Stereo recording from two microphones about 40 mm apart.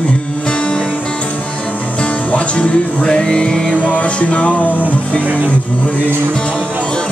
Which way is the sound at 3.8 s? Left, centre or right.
Left.